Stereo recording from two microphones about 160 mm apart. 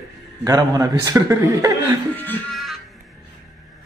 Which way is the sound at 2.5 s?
Centre (ahead or behind).